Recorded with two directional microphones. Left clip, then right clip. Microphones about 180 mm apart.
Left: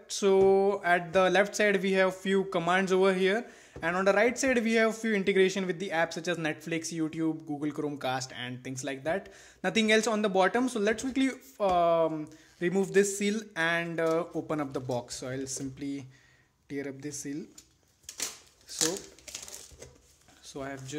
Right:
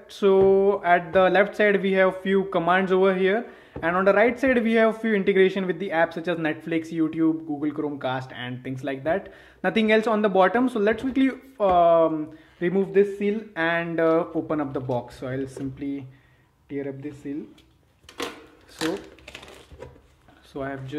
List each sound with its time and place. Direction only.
0.1 s speech: 20° left (ahead or behind)
12.9 s speech: 35° left (ahead or behind)
13.5 s speech: 20° left (ahead or behind)
16.6 s speech: 40° left (ahead or behind)
18.7 s speech: 15° left (ahead or behind)
20.5 s speech: 20° left (ahead or behind)